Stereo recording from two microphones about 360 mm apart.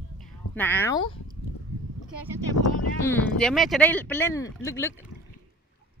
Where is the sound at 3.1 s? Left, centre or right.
Centre.